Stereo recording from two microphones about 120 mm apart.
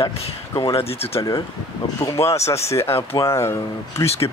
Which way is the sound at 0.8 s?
55° left (ahead or behind).